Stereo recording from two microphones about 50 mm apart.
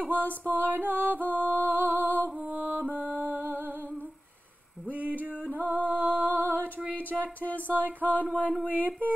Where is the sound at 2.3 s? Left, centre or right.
Centre.